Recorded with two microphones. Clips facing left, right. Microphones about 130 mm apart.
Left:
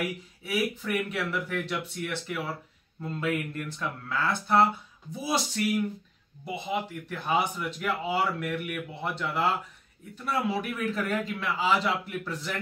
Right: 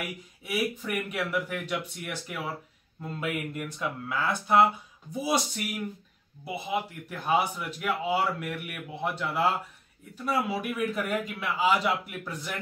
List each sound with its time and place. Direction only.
0.4 s speech: 15° right (ahead or behind)
6.4 s speech: 10° right (ahead or behind)